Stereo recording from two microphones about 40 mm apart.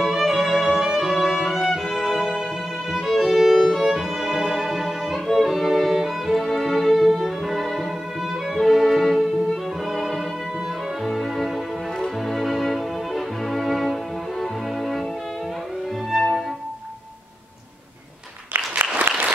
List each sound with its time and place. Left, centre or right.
0.0 s music: centre
3.9 s violin: centre
8.5 s music: centre
16.1 s music: centre
18.8 s applause: right